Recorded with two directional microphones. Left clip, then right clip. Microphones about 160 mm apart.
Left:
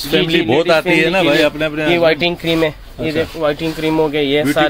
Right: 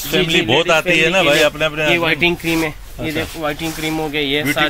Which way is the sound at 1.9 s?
90° left.